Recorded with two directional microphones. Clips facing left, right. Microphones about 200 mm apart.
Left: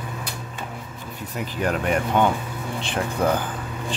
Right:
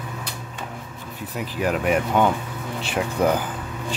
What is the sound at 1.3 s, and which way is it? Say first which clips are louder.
Speech: right 1 dB; 5° right (ahead or behind).